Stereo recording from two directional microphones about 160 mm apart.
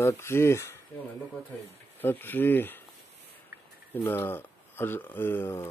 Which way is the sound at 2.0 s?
10° left (ahead or behind).